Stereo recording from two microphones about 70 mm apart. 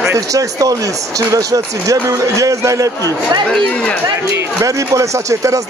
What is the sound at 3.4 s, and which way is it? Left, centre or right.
Speech, centre.